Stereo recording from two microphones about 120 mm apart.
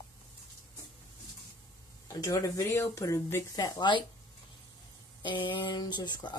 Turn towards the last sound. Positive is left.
turn(degrees=40)  # may be behind; listen again after turning